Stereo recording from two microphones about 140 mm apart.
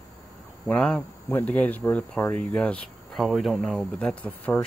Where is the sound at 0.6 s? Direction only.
5° left (ahead or behind).